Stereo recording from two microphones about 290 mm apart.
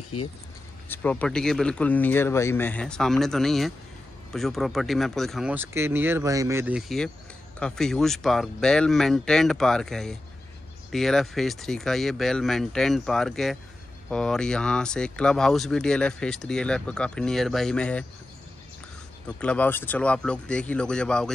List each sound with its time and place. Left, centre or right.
0.8 s speech: centre
19.2 s speech: centre